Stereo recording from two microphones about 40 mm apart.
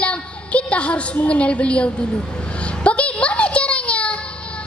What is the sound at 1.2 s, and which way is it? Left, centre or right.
Speech, left.